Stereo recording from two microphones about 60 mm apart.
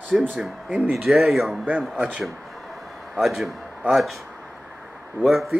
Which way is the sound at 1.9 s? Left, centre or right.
Right.